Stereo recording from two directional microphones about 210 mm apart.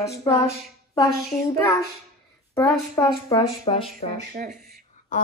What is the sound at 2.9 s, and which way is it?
Speech, 15° left (ahead or behind).